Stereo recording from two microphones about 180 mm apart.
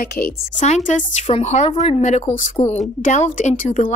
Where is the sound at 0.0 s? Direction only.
55° left (ahead or behind).